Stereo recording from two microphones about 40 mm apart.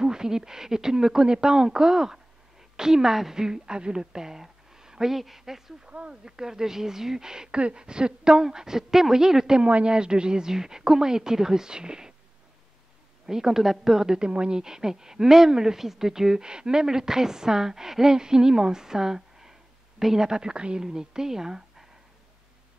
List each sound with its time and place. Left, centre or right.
0.0 s a woman's voice: centre
5.9 s a woman's voice: right
6.2 s a woman's voice: centre
9.6 s a woman's voice: right
13.3 s a woman's voice: centre